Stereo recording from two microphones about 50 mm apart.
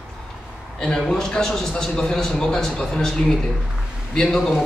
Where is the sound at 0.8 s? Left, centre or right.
Centre.